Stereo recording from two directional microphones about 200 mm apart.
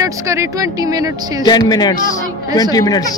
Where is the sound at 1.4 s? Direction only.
20° left (ahead or behind).